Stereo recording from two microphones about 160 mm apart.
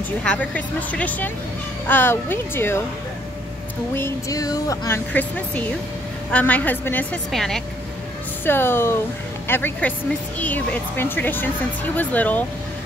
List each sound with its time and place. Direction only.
0.2 s speech: 5° left (ahead or behind)
3.9 s speech: 20° left (ahead or behind); by 7.6 s centre (ahead or behind)
8.5 s speech: 15° left (ahead or behind)